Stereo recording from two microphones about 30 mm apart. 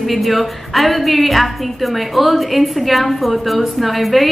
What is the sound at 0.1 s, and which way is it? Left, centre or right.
A woman's voice, centre.